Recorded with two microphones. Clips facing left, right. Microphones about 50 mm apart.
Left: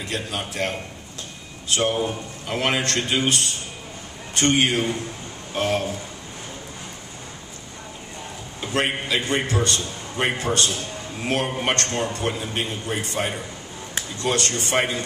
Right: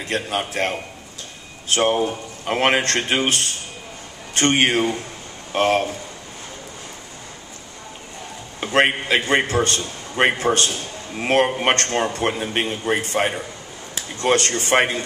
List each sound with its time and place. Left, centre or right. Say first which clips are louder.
0.0 s a man's voice: right 5 dB; right
8.5 s a man's voice: right 6 dB; right